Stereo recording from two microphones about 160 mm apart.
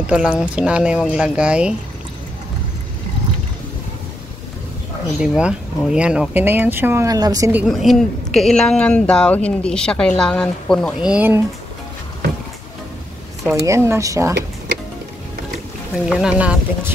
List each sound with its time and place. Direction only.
0.0 s speech: 5° right (ahead or behind)
5.2 s speech: 5° right (ahead or behind); by 7.5 s 20° right (ahead or behind)
7.5 s speech: centre (ahead or behind)
13.7 s speech: 15° right (ahead or behind)
16.1 s speech: 5° right (ahead or behind)